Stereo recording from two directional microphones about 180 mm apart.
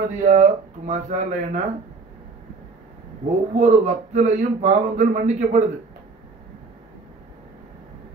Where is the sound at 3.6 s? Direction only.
40° right (ahead or behind).